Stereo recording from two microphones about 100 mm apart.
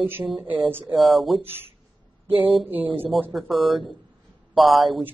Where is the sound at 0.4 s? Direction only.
20° right (ahead or behind).